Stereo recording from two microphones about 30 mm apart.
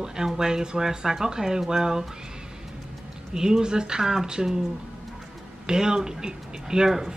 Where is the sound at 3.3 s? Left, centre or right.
Right.